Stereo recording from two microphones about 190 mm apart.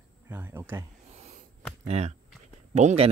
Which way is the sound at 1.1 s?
35° right (ahead or behind).